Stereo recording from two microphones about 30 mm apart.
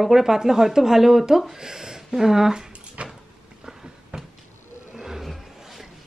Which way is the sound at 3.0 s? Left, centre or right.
Right.